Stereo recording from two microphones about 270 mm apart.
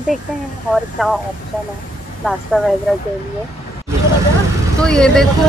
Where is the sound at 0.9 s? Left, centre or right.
Centre.